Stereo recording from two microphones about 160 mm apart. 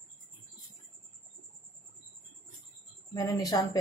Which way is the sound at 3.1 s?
20° left (ahead or behind).